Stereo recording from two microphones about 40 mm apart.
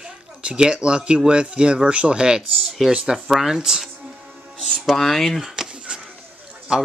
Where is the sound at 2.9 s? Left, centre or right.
Right.